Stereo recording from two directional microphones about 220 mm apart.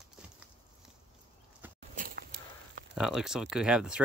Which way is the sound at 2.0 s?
40° right (ahead or behind).